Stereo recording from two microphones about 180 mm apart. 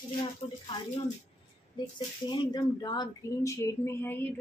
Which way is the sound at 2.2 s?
25° left (ahead or behind).